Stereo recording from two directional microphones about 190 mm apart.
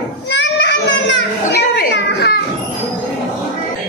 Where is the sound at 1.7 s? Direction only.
60° left (ahead or behind).